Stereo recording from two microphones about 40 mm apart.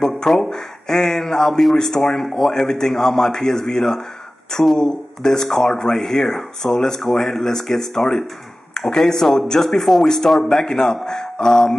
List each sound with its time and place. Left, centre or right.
0.3 s a man's voice: centre
10.0 s a man's voice: centre